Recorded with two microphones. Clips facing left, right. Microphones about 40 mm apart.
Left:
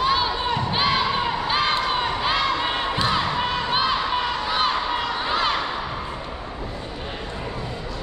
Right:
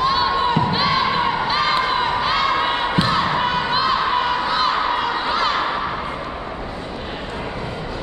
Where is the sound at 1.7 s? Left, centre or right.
Centre.